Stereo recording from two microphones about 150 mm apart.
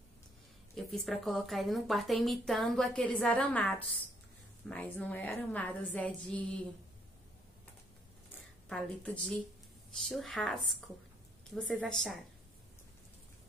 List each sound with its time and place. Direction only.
0.7 s a woman's voice: centre (ahead or behind)
8.6 s a woman's voice: 5° left (ahead or behind)
11.9 s a woman's voice: centre (ahead or behind)